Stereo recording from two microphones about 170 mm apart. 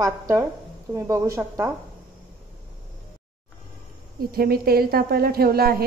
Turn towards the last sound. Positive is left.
turn(degrees=-65)  # may be behind; listen again after turning